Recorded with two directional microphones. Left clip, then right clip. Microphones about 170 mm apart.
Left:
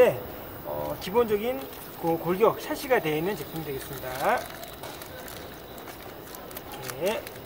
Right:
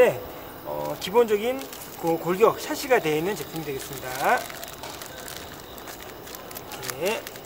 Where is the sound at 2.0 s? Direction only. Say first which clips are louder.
Right 3 dB; 10° right (ahead or behind).